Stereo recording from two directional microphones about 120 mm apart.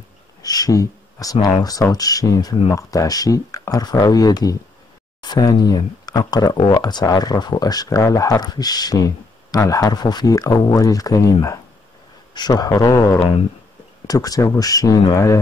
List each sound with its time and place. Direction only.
0.4 s speech: 30° left (ahead or behind)